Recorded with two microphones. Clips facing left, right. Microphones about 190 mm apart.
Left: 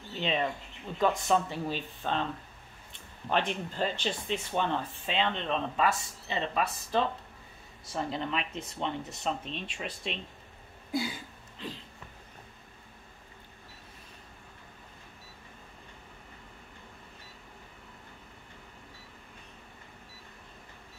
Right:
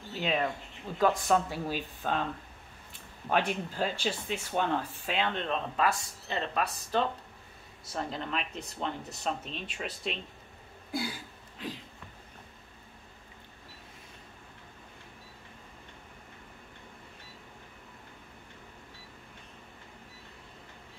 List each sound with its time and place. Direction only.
0.1 s speech: 5° right (ahead or behind)
3.3 s speech: 10° right (ahead or behind)
10.9 s a sound: centre (ahead or behind)